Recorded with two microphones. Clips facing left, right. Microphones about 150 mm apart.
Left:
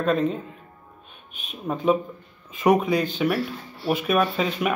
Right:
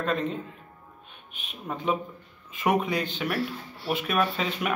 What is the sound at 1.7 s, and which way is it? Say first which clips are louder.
Speech: left 7 dB; 15° left (ahead or behind).